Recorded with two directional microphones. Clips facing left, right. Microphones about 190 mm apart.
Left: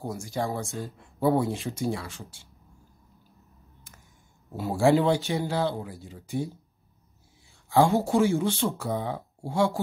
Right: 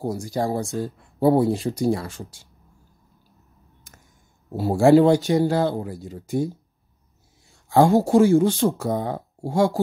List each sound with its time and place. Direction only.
0.0 s speech: 35° right (ahead or behind)
4.5 s speech: 40° right (ahead or behind)
7.7 s speech: 40° right (ahead or behind)